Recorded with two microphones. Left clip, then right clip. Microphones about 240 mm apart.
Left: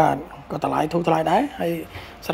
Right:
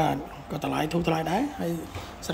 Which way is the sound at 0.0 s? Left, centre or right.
Centre.